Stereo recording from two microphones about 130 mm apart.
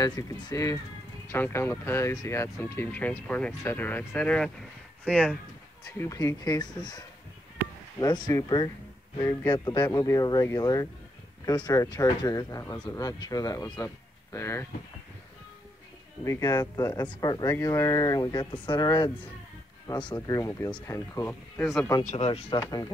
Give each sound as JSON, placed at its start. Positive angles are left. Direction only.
{"t": 0.0, "sound": "speech", "side_deg": 30}
{"t": 5.9, "sound": "speech", "side_deg": 25}
{"t": 16.3, "sound": "speech", "side_deg": 25}
{"t": 22.1, "sound": "speech", "side_deg": 50}
{"t": 22.6, "sound": "speech", "side_deg": 25}